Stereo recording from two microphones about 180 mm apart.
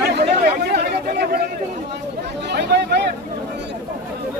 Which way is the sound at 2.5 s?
65° right (ahead or behind).